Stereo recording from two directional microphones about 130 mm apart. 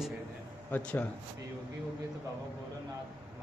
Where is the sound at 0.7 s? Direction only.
10° left (ahead or behind).